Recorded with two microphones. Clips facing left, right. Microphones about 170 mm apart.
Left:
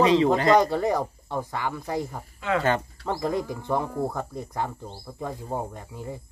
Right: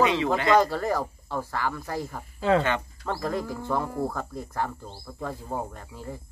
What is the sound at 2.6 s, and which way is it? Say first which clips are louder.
Speech: left 3 dB; 40° left (ahead or behind).